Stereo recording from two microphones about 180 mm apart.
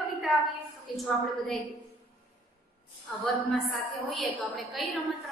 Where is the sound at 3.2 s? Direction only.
Centre (ahead or behind).